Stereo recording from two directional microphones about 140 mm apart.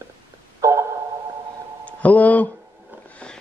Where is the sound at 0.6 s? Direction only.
20° right (ahead or behind).